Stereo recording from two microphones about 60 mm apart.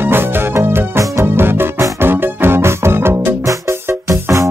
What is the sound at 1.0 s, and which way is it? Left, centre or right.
Music, right.